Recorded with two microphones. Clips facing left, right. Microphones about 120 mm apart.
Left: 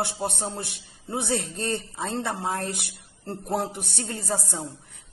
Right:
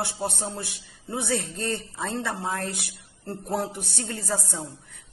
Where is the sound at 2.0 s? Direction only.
35° left (ahead or behind).